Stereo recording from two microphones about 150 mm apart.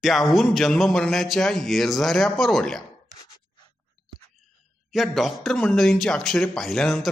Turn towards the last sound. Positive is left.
turn(degrees=0)  # may be behind; listen again after turning